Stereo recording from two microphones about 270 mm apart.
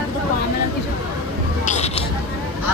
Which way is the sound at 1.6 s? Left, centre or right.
Left.